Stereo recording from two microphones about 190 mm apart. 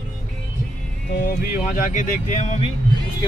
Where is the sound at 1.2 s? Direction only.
45° left (ahead or behind).